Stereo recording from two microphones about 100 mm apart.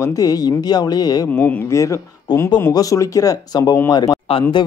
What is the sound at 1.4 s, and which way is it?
A man's voice, 25° left (ahead or behind).